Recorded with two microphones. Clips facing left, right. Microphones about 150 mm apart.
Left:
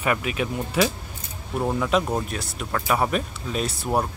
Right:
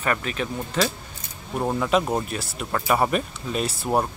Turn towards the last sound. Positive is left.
turn(degrees=0)  # may be behind; listen again after turning